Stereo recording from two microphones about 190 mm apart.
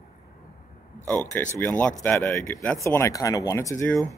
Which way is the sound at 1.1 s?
10° left (ahead or behind).